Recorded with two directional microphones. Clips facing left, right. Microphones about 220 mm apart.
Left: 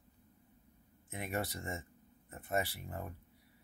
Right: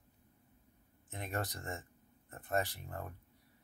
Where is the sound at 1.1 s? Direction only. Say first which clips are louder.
Left 2 dB; 10° left (ahead or behind).